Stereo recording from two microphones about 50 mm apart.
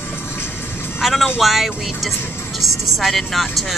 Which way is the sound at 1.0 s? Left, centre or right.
Centre.